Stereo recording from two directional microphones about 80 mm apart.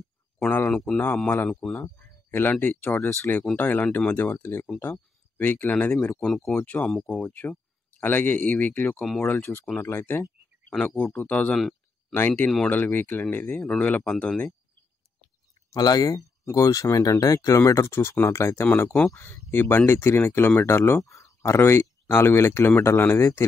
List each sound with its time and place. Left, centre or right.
0.7 s speech: centre
0.9 s speech: centre
1.8 s a sound: left
2.6 s speech: left
6.2 s speech: centre
6.6 s speech: centre
6.9 s speech: centre
7.2 s speech: left
11.1 s speech: centre
15.7 s speech: left
18.9 s speech: centre
19.1 s speech: left
21.0 s speech: left
21.4 s speech: left